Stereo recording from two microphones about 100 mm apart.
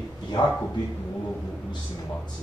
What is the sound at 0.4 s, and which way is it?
Speech, 45° left (ahead or behind).